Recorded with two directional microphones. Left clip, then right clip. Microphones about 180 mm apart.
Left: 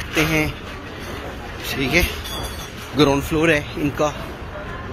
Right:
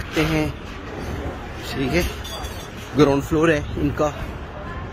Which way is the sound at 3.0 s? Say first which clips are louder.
Even; 40° right (ahead or behind).